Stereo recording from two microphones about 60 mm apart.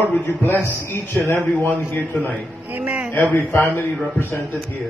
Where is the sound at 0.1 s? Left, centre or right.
Left.